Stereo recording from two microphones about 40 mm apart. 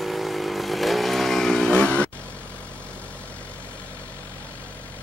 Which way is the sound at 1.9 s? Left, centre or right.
Left.